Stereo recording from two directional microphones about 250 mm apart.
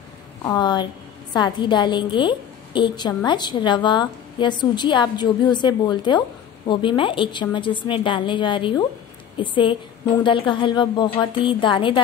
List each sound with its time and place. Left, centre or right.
0.4 s a woman's voice: centre